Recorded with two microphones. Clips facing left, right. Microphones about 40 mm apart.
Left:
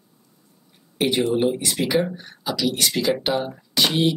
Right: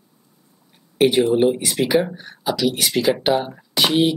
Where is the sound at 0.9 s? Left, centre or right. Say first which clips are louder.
Right 5 dB; centre.